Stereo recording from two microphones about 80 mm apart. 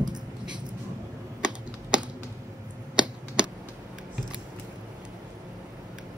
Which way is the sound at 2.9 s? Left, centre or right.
Centre.